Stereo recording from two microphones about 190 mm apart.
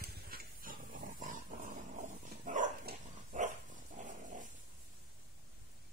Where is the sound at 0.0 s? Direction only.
50° right (ahead or behind).